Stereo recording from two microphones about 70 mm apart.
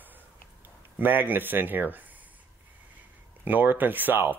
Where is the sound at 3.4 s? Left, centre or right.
Right.